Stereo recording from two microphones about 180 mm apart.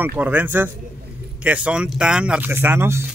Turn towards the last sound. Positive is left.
turn(degrees=-15)  # may be behind; listen again after turning